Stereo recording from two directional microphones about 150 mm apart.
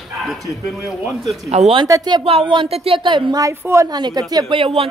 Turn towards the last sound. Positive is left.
turn(degrees=-40)  # may be behind; listen again after turning